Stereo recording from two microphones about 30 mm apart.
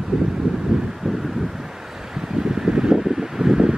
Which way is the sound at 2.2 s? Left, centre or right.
Centre.